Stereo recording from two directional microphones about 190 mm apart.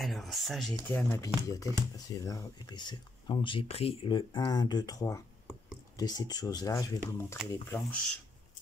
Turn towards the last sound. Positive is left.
turn(degrees=5)  # may be behind; listen again after turning